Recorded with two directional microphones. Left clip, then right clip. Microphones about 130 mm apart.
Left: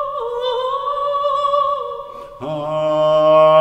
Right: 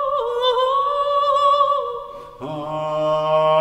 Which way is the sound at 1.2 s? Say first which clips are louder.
Right 2 dB; 35° right (ahead or behind).